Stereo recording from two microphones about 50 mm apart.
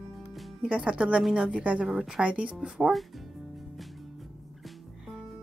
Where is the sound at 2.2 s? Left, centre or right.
Right.